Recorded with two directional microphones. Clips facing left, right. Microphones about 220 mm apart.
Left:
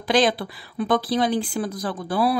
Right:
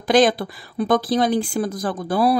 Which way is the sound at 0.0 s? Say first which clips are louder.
Right 4 dB; 45° right (ahead or behind).